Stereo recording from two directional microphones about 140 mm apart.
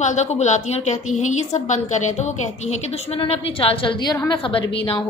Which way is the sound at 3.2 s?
40° left (ahead or behind).